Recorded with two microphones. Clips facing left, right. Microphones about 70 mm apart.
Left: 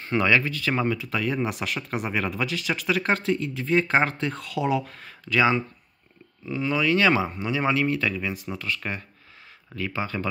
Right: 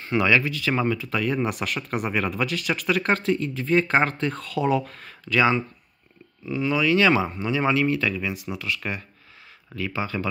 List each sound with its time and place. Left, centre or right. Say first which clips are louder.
0.0 s speech: right 1 dB; left
0.7 s speech: right 1 dB; centre
6.5 s speech: right 2 dB; left